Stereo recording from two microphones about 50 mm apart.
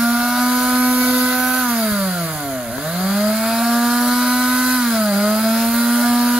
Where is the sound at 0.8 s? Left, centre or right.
Right.